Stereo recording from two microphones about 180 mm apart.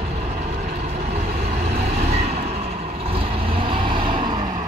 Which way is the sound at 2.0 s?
40° right (ahead or behind).